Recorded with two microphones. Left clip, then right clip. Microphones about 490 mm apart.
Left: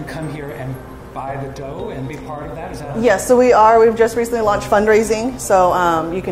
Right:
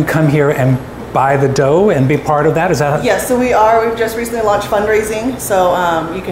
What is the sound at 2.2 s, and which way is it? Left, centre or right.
Speech, right.